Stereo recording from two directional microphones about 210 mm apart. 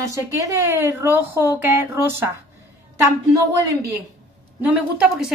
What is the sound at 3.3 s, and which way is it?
A woman's voice, 15° right (ahead or behind).